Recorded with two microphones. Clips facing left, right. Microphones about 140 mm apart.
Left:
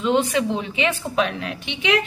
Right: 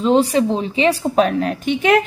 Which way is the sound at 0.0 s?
35° right (ahead or behind).